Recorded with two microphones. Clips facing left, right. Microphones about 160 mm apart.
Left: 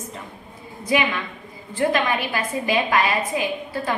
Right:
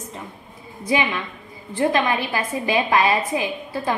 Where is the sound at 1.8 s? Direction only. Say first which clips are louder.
Right 1 dB; 20° right (ahead or behind).